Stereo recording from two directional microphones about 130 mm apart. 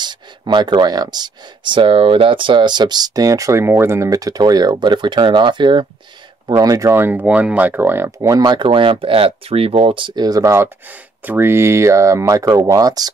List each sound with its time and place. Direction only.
0.0 s speech: 35° right (ahead or behind)